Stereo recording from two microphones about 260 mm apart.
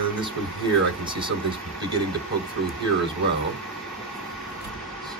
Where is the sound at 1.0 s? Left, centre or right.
Centre.